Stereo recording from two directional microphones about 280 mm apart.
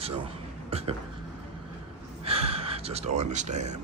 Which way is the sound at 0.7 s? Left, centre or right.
Right.